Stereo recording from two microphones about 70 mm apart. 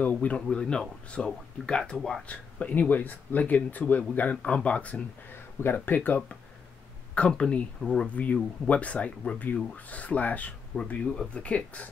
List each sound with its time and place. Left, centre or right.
0.0 s speech: left; by 2.2 s centre
2.2 s speech: left
5.6 s speech: left
7.2 s speech: centre
10.8 s speech: centre